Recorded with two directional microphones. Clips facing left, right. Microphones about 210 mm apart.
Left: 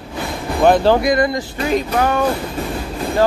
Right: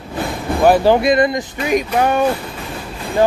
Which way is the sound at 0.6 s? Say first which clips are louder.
Right 1 dB; 10° right (ahead or behind).